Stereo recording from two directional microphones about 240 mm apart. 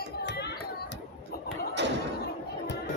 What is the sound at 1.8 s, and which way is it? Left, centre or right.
Thump, right.